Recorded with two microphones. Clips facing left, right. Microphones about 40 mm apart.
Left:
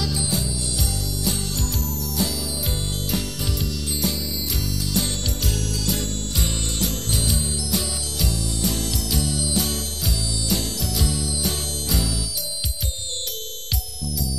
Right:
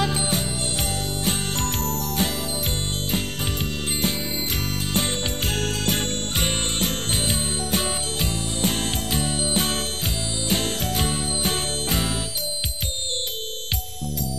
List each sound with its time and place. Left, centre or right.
0.0 s music: right
14.0 s music: right